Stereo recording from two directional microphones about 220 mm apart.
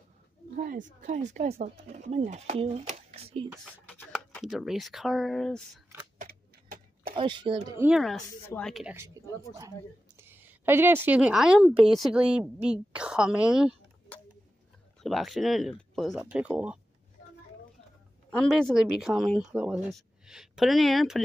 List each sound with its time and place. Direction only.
0.6 s speech: 35° right (ahead or behind)
3.8 s speech: 5° left (ahead or behind)
6.1 s a sound: 40° right (ahead or behind)
7.2 s a woman's voice: 20° right (ahead or behind); by 13.7 s 5° right (ahead or behind)
15.0 s a woman's voice: centre (ahead or behind)
18.3 s a woman's voice: 5° left (ahead or behind)